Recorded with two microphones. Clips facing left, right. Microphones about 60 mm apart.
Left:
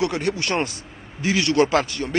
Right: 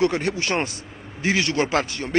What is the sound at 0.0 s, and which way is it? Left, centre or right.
A man's voice, right.